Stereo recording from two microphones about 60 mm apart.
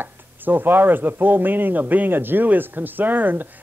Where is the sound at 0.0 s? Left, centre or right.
Right.